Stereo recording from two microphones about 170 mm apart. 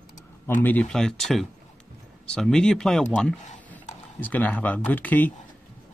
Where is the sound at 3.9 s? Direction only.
45° left (ahead or behind).